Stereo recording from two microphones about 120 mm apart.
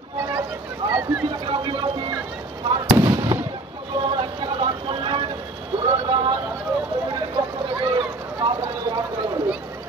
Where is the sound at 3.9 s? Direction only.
45° right (ahead or behind).